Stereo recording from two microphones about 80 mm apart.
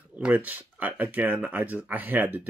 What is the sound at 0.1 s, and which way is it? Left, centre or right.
Speech, centre.